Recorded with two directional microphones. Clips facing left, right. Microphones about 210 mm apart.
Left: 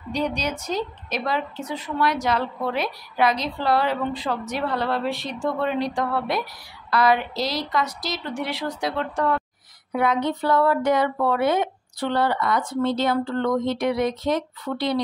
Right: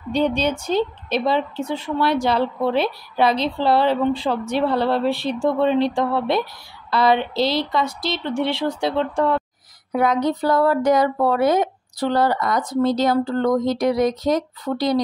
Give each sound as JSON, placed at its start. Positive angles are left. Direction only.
{"t": 0.1, "sound": "a woman's voice", "side_deg": -30}
{"t": 9.9, "sound": "speech", "side_deg": -40}